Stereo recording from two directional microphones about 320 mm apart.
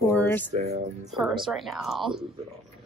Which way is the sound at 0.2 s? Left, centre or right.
Centre.